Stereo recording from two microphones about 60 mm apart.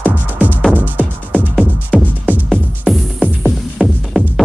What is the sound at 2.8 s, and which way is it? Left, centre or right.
Music, centre.